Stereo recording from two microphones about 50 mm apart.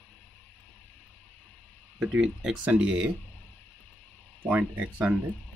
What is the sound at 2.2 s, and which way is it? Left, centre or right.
Speech, centre.